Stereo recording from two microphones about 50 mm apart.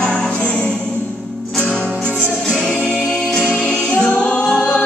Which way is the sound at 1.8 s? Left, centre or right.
Left.